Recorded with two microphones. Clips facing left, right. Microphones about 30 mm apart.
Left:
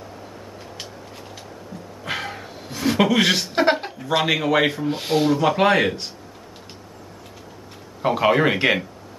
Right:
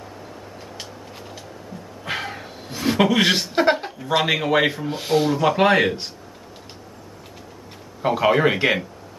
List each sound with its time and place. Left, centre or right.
2.0 s a sound: centre
3.4 s speech: centre
4.1 s speech: centre
4.8 s speech: centre
8.0 s speech: centre